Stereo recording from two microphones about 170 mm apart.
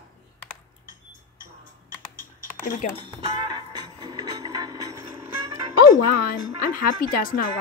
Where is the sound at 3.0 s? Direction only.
30° right (ahead or behind).